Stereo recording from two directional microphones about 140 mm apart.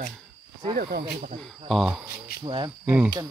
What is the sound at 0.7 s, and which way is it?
Speech, 90° right.